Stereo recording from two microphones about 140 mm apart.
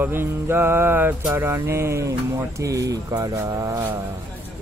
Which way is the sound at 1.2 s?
20° right (ahead or behind).